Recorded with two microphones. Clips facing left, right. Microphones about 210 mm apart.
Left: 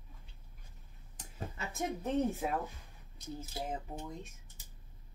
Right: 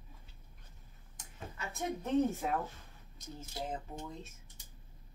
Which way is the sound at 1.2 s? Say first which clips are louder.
Left 4 dB; 35° left (ahead or behind).